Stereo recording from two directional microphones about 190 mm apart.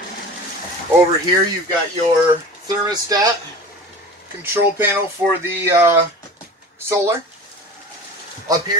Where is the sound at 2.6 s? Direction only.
20° right (ahead or behind).